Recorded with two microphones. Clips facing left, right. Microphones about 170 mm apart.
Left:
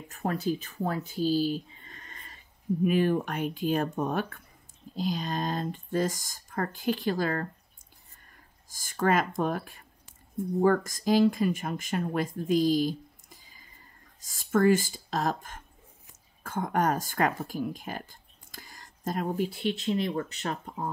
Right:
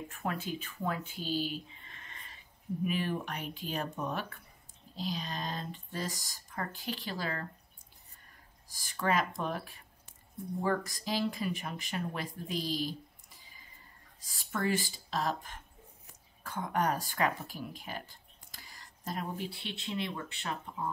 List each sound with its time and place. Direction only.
0.1 s speech: 40° left (ahead or behind)
8.6 s speech: 45° left (ahead or behind)